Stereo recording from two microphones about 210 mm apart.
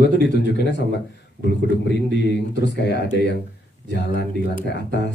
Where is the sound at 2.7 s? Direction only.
55° left (ahead or behind).